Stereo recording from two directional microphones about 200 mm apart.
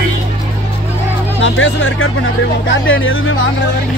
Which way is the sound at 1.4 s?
80° left.